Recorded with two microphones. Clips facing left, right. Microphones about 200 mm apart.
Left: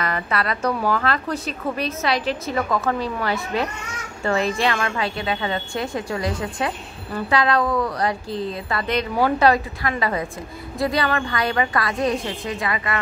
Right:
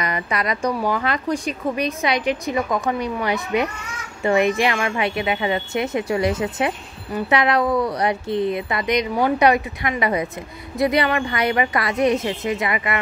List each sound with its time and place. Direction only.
0.0 s a woman's voice: 15° right (ahead or behind)